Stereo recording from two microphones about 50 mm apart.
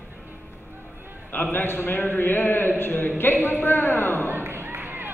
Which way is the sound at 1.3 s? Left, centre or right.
Left.